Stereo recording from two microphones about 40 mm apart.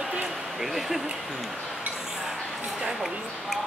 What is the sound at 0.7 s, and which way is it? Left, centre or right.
Speech, centre.